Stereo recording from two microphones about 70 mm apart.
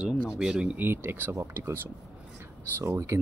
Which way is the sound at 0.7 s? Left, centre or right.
Right.